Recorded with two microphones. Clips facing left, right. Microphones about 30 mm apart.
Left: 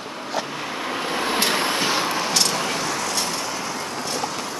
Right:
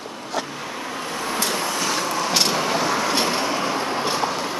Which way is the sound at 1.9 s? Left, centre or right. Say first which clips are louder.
Left 1 dB; left.